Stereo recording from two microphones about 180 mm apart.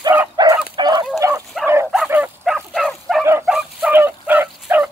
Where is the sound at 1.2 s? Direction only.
15° right (ahead or behind).